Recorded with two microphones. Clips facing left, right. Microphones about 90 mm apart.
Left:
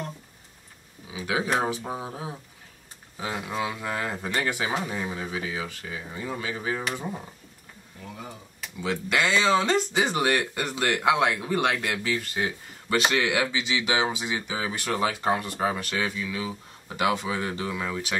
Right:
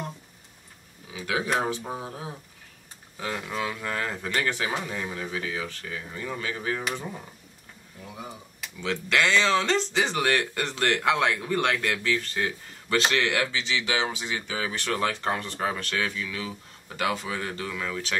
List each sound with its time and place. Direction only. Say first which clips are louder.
1.1 s a sound: left 1 dB; 20° left (ahead or behind)
1.6 s speech: left 1 dB; 20° left (ahead or behind)
8.7 s speech: even; 15° left (ahead or behind)